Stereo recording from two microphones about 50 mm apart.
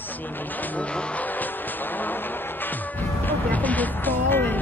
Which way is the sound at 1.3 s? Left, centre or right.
Left.